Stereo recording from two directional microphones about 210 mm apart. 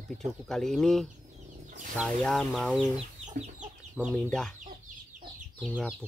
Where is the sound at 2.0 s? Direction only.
Centre (ahead or behind).